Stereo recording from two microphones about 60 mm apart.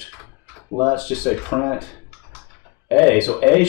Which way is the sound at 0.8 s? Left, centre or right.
Left.